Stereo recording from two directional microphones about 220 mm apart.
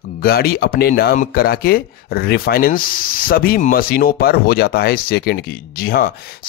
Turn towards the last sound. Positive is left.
turn(degrees=45)  # may be behind; listen again after turning